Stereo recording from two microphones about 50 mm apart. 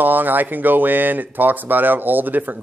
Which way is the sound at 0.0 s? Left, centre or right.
Right.